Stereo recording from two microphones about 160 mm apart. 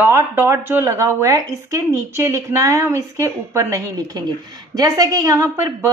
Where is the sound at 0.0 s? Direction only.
15° right (ahead or behind).